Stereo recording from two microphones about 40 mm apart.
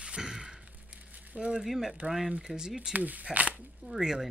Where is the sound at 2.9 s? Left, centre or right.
Right.